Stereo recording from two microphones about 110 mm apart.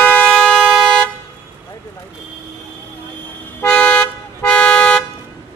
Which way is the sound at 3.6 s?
10° left (ahead or behind).